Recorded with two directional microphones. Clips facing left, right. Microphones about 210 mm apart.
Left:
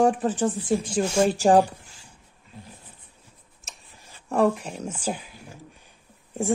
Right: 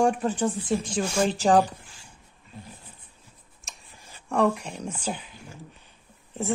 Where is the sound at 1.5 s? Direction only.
30° left (ahead or behind).